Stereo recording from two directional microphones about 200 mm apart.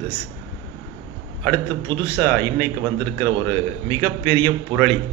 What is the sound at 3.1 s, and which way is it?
Speech, 25° right (ahead or behind).